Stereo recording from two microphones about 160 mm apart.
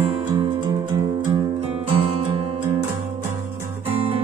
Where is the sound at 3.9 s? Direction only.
35° right (ahead or behind).